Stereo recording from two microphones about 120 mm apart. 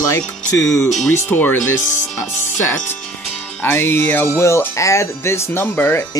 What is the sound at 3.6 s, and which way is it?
Music, 20° left (ahead or behind).